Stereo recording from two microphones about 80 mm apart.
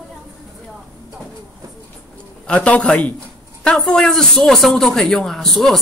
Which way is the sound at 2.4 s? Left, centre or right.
Centre.